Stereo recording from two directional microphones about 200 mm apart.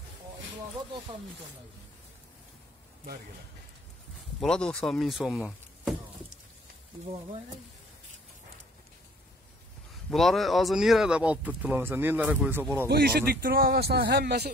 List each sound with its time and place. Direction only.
4.4 s speech: 5° left (ahead or behind)
10.1 s speech: centre (ahead or behind)
12.8 s a man's voice: 50° right (ahead or behind)